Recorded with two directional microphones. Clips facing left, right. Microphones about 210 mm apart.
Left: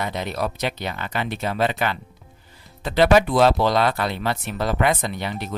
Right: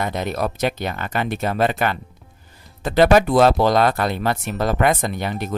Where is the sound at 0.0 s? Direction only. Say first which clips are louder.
Right 3 dB; 50° right (ahead or behind).